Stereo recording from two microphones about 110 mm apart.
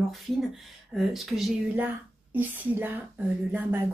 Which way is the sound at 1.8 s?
15° right (ahead or behind).